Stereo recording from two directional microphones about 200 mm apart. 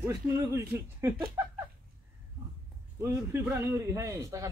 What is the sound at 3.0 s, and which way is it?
A man's voice, 15° right (ahead or behind).